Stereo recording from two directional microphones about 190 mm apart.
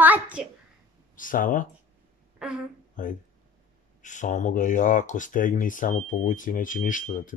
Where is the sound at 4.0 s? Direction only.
40° left (ahead or behind).